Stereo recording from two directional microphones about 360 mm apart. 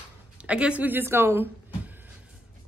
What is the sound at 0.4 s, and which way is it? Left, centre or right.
Speech, centre.